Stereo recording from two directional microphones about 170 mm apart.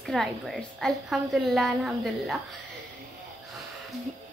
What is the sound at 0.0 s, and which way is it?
A woman's voice, centre (ahead or behind).